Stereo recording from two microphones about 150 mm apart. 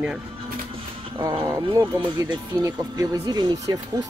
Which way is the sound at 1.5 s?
20° right (ahead or behind).